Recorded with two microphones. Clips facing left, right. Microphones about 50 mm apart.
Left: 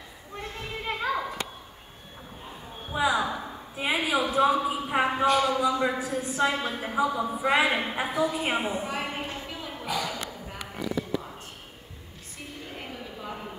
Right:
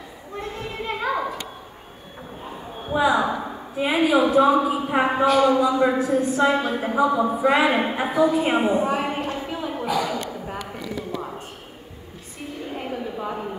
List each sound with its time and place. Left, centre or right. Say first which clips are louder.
0.4 s children playing: right 5 dB; centre
3.1 s a woman's voice: right 6 dB; centre
3.9 s speech: right 8 dB; centre
6.2 s a woman's voice: right 3 dB; centre
6.6 s speech: right 6 dB; centre
7.1 s speech: right 8 dB; right
7.4 s a woman's voice: right 4 dB; centre
8.6 s a sound: right 9 dB; centre
9.4 s a sound: right 9 dB; right
9.8 s speech: right 6 dB; centre
10.2 s a sound: right 7 dB; right
12.7 s a sound: right 11 dB; centre